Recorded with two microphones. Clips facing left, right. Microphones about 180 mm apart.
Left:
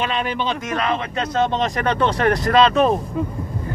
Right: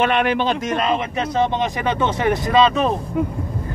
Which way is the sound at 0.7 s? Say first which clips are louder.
Right 2 dB; 20° right (ahead or behind).